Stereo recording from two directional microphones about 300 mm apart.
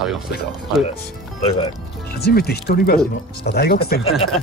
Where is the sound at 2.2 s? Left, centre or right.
Left.